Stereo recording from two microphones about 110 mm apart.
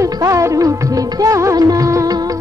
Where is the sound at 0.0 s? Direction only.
30° right (ahead or behind).